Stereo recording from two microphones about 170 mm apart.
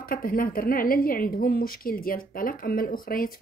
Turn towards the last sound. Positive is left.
turn(degrees=55)  # may be behind; listen again after turning